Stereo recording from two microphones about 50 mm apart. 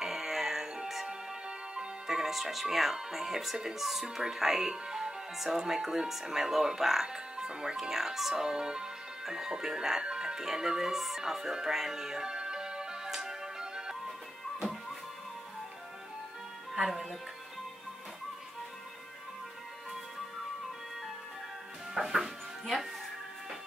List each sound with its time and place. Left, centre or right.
0.0 s music: centre
1.8 s speech: centre
21.9 s music: centre